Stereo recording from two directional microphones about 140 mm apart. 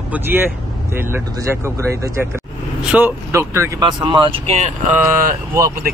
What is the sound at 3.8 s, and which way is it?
Speech, 30° right (ahead or behind).